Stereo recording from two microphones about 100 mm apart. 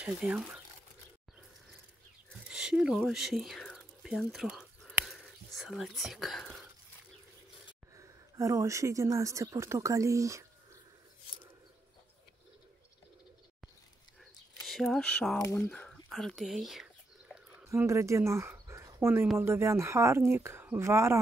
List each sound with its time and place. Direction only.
0.0 s speech: 10° right (ahead or behind)
2.5 s a sound: 5° right (ahead or behind)
3.1 s speech: 5° right (ahead or behind)
3.6 s a sound: centre (ahead or behind)
5.0 s speech: centre (ahead or behind)
7.9 s speech: 35° right (ahead or behind)
14.6 s speech: centre (ahead or behind)
15.7 s squish: 10° left (ahead or behind)
16.1 s whispering: centre (ahead or behind)
17.6 s a woman's voice: 30° right (ahead or behind)